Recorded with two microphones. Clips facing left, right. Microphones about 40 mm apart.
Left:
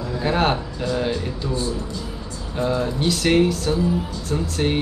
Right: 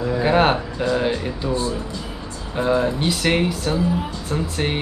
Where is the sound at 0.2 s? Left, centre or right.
Centre.